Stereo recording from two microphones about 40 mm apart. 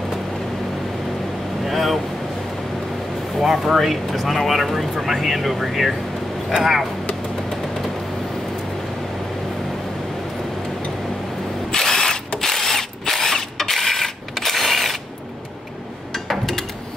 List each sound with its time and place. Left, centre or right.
1.7 s vehicle: centre
3.3 s speech: centre
11.7 s drill: centre
12.4 s mechanisms: centre
14.4 s a sound: centre
16.1 s a sound: centre